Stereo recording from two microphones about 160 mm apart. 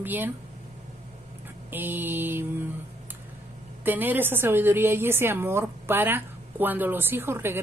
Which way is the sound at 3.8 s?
10° right (ahead or behind).